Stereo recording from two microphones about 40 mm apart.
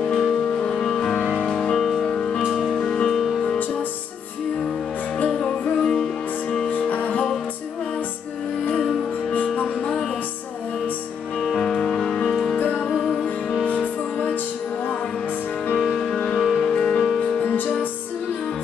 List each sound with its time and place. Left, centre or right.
0.6 s music: centre
1.8 s music: centre
2.6 s music: centre
5.4 s music: centre
6.7 s music: left
11.5 s music: centre
12.5 s music: left
12.9 s music: centre
13.7 s music: left
15.8 s music: centre
16.6 s music: centre